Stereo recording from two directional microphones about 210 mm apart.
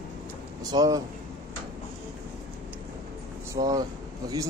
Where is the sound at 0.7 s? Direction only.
15° right (ahead or behind).